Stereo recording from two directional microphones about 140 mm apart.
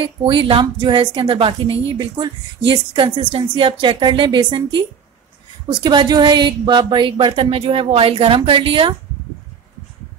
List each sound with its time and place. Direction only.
0.0 s a woman's voice: 40° right (ahead or behind)